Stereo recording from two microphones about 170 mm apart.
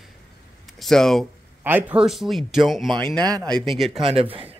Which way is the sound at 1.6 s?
10° right (ahead or behind).